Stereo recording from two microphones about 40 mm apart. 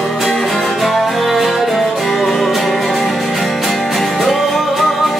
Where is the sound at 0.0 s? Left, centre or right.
Centre.